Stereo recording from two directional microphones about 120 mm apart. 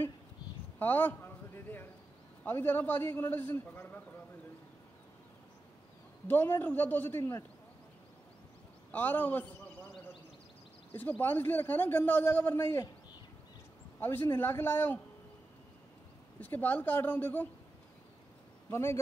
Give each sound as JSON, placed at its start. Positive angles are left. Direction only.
{"t": 0.7, "sound": "a sound", "side_deg": 15}
{"t": 2.4, "sound": "speech", "side_deg": 15}
{"t": 6.2, "sound": "speech", "side_deg": 15}
{"t": 8.9, "sound": "a man's voice", "side_deg": 15}
{"t": 11.0, "sound": "speech", "side_deg": 15}
{"t": 13.9, "sound": "speech", "side_deg": 15}
{"t": 16.3, "sound": "speech", "side_deg": 15}
{"t": 18.7, "sound": "a man's voice", "side_deg": 20}